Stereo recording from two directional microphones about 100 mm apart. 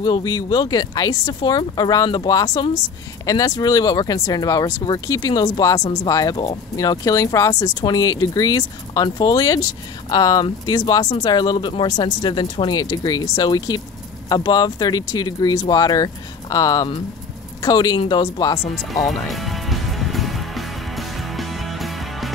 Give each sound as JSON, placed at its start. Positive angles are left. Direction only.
{"t": 0.0, "sound": "speech", "side_deg": 40}
{"t": 18.8, "sound": "music", "side_deg": 0}